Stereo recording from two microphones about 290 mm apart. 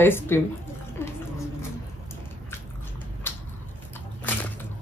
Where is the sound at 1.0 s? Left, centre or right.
Centre.